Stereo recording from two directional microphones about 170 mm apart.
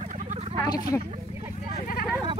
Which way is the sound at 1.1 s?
40° right (ahead or behind).